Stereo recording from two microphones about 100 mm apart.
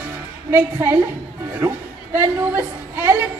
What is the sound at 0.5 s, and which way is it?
Music, 20° right (ahead or behind).